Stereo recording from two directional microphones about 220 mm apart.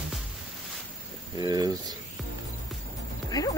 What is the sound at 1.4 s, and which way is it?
Speech, 15° right (ahead or behind).